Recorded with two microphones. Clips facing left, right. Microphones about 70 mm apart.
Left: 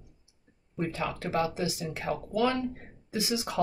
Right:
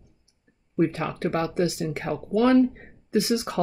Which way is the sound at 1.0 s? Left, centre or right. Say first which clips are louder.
Right 3 dB; right.